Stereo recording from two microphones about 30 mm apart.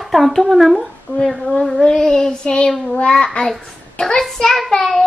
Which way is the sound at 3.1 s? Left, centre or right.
Left.